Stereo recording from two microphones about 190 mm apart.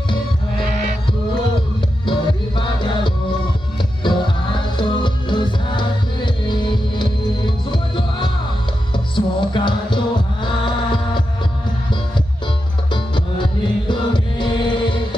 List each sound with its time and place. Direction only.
2.0 s music: 25° left (ahead or behind)
12.9 s music: 25° left (ahead or behind)